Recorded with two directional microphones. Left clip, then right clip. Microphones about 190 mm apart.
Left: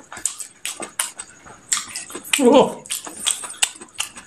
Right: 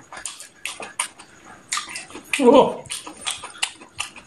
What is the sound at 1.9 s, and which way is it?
Bathtub, 50° left (ahead or behind).